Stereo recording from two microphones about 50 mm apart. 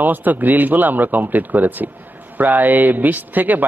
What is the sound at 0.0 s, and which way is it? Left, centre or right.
Speech, right.